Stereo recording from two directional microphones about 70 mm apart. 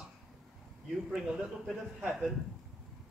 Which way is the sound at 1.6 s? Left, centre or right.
Centre.